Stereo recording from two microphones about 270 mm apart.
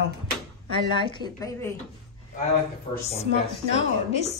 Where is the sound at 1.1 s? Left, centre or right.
Centre.